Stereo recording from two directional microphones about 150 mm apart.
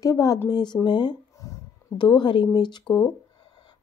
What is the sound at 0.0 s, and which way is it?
Speech, 25° left (ahead or behind).